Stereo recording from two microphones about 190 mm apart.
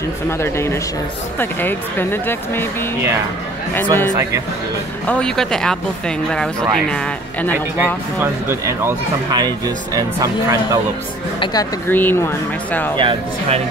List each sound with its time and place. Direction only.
0.4 s speech: 15° left (ahead or behind)
3.7 s speech: 10° left (ahead or behind)
7.7 s speech: 10° right (ahead or behind)
11.9 s speech: 10° left (ahead or behind)
12.9 s speech: 25° right (ahead or behind)